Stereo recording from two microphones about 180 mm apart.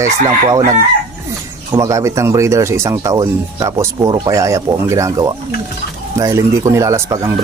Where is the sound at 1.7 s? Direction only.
15° right (ahead or behind).